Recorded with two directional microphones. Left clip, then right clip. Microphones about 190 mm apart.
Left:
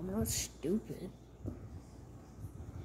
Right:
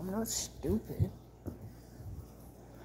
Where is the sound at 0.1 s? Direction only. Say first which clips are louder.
Right 1 dB; 10° left (ahead or behind).